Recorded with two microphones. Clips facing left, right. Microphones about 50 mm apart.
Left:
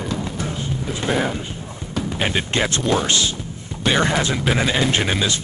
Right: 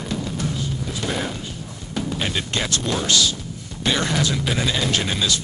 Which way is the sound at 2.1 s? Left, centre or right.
Left.